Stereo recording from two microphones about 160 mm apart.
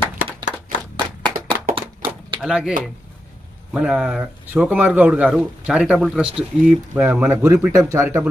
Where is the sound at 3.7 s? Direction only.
5° right (ahead or behind).